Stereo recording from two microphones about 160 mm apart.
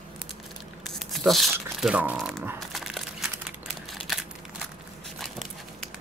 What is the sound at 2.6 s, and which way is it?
Crumpling, centre (ahead or behind).